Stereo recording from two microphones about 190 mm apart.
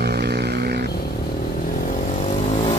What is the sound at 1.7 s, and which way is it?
Vehicle, 45° left (ahead or behind).